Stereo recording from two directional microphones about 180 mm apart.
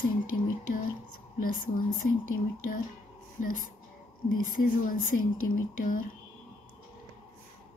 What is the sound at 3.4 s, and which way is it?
Speech, 50° left (ahead or behind).